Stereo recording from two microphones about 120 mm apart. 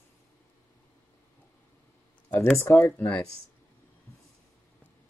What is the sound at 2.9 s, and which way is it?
Speech, 10° left (ahead or behind).